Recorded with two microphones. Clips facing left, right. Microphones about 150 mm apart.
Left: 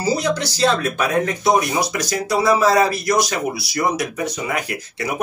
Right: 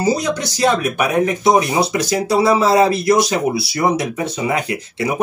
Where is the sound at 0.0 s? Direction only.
15° right (ahead or behind).